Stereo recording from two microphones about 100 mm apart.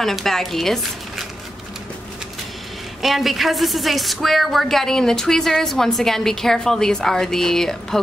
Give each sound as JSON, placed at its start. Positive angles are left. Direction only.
{"t": 0.0, "sound": "a woman's voice", "side_deg": 5}
{"t": 3.0, "sound": "a woman's voice", "side_deg": 0}